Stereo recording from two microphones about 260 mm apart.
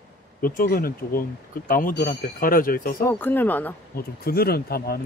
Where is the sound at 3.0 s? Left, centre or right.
Centre.